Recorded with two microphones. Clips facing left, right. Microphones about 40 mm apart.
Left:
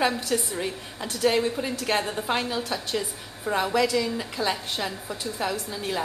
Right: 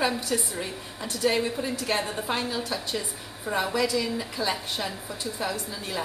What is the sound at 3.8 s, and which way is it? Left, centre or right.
A woman's voice, centre.